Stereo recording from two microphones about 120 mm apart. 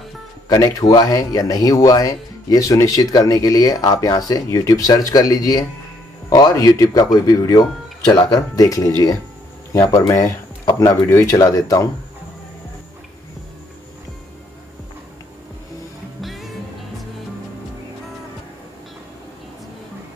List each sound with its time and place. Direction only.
0.5 s speech: 30° left (ahead or behind)
16.2 s music: centre (ahead or behind)